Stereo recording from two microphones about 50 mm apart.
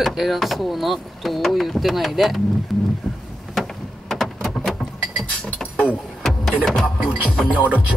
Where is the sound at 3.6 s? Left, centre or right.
Centre.